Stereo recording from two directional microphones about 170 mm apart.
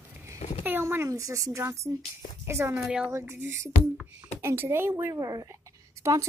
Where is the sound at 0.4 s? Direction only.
40° left (ahead or behind).